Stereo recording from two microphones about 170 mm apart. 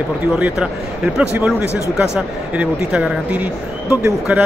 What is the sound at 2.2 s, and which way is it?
Speech, 5° right (ahead or behind).